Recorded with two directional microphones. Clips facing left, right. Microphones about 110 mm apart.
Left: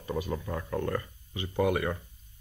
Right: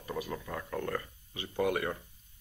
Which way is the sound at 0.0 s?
20° left (ahead or behind).